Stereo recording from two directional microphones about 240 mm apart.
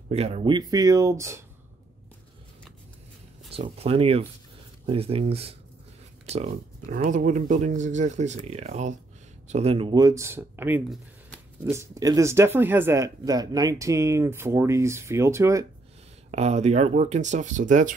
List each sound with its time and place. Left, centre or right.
0.1 s speech: right
3.4 s speech: right
16.3 s speech: right